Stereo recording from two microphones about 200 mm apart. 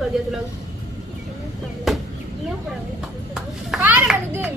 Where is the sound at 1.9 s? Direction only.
Centre (ahead or behind).